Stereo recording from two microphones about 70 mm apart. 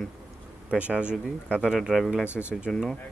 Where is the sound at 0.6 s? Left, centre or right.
Centre.